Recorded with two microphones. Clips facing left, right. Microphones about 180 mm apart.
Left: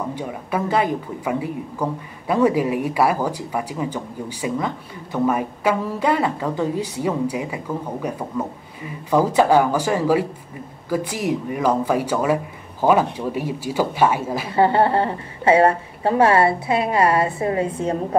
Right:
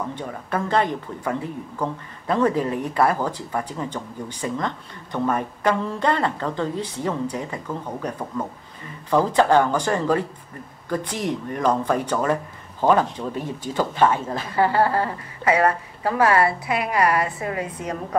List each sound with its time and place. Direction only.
0.1 s speech: 10° left (ahead or behind)
14.5 s a woman's voice: 25° left (ahead or behind)